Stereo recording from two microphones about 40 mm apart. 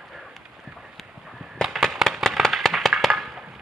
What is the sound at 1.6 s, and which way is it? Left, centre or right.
Fireworks, centre.